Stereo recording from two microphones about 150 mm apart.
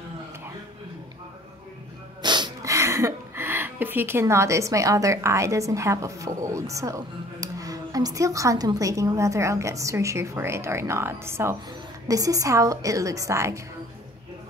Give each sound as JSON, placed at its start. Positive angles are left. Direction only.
{"t": 2.2, "sound": "a woman's voice", "side_deg": -30}